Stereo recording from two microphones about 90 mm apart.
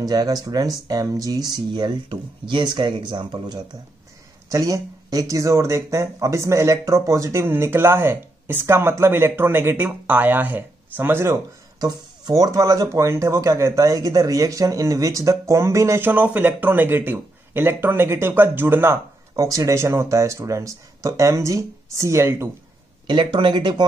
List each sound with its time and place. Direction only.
0.0 s speech: 45° right (ahead or behind)
4.5 s speech: 40° right (ahead or behind)
11.8 s speech: 45° right (ahead or behind)
16.1 s speech: 20° right (ahead or behind)
19.3 s speech: 40° right (ahead or behind)
23.0 s speech: 65° right (ahead or behind)